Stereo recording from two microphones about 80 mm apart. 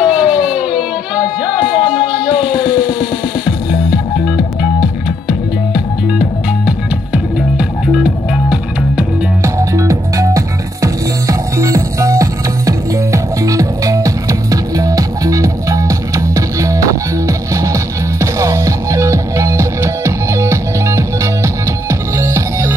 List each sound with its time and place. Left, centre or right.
0.0 s a sound: centre
1.5 s music: centre
6.1 s music: centre
9.4 s music: right